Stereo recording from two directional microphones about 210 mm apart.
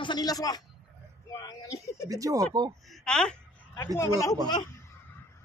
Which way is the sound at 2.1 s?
15° right (ahead or behind).